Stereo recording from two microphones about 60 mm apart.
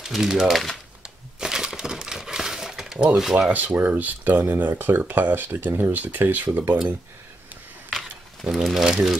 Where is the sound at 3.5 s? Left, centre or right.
Right.